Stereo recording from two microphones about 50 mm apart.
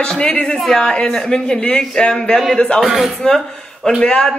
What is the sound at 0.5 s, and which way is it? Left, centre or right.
Speech, centre.